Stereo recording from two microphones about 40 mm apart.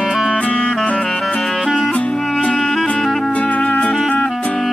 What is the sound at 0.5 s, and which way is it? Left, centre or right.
Music, left.